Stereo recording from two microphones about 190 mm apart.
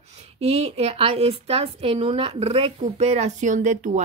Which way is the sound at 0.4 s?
30° right (ahead or behind).